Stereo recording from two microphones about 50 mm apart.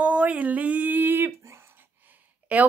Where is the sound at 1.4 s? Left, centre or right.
Right.